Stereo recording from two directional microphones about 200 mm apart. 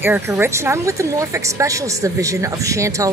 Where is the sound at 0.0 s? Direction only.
10° right (ahead or behind).